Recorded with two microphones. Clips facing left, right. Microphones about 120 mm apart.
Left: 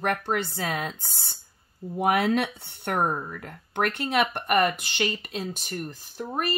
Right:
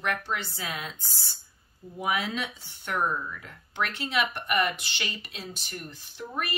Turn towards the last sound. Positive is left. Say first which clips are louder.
# left 5 dB
turn(degrees=40)  # may be behind; listen again after turning